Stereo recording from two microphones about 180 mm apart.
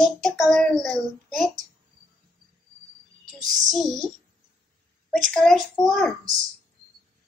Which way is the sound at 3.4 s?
45° right (ahead or behind).